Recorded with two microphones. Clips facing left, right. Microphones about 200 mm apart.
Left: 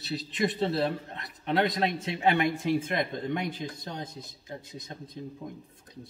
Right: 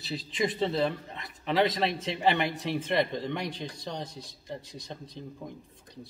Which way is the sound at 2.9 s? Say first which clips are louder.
Right 2 dB; 80° right.